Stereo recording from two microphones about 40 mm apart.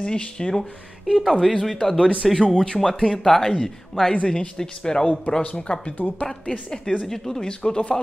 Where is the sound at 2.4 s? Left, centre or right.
Left.